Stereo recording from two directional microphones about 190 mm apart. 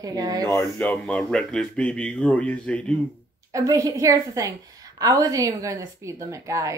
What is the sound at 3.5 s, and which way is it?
A woman's voice, 15° right (ahead or behind).